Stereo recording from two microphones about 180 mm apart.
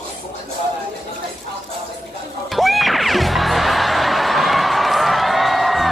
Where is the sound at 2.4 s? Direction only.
Centre (ahead or behind).